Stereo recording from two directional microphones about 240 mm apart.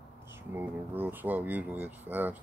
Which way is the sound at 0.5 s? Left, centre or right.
Centre.